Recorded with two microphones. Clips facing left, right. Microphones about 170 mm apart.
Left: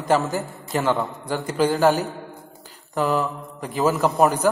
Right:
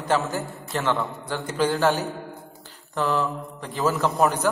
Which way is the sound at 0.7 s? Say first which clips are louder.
Left 3 dB; 15° left (ahead or behind).